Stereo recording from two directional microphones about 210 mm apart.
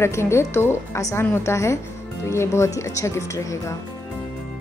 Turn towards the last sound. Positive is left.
turn(degrees=15)  # may be behind; listen again after turning